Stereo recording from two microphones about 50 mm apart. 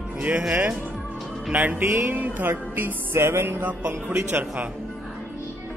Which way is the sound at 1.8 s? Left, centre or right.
Right.